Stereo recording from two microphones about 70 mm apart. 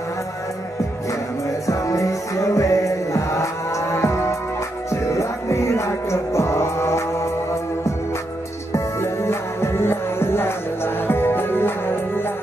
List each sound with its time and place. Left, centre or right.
1.7 s music: left
8.7 s music: left